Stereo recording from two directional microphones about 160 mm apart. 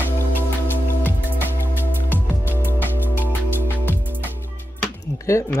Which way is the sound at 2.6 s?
10° right (ahead or behind).